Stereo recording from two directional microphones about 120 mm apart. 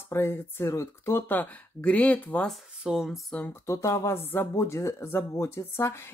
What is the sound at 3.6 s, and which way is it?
Speech, 25° left (ahead or behind).